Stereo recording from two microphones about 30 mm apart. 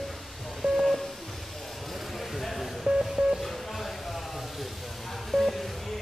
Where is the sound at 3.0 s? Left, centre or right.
Centre.